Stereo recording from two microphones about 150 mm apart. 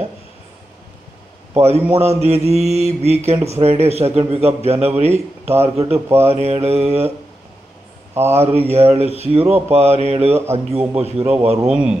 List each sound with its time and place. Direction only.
1.5 s mantra: 45° right (ahead or behind)
8.1 s speech: 15° right (ahead or behind)
8.4 s mantra: 45° right (ahead or behind)
11.6 s a man's voice: 5° right (ahead or behind)